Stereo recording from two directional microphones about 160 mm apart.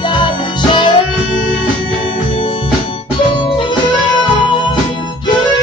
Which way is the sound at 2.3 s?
35° left (ahead or behind).